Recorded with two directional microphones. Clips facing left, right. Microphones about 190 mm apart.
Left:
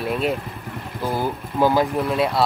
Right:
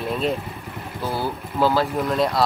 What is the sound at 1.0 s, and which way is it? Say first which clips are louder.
Speech: left 2 dB; 15° left (ahead or behind).